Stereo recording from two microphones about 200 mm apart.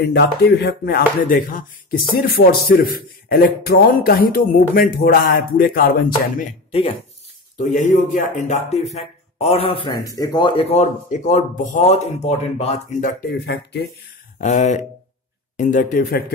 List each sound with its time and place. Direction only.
0.0 s speech: 55° left (ahead or behind)
7.5 s speech: 40° left (ahead or behind)
9.8 s speech: 20° left (ahead or behind); by 13.6 s 50° left (ahead or behind)
14.4 s speech: 35° left (ahead or behind)